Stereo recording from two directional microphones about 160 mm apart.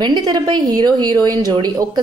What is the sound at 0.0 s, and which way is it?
Speech, 25° right (ahead or behind).